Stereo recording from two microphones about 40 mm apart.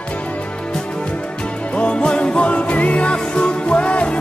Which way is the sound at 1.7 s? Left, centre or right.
Left.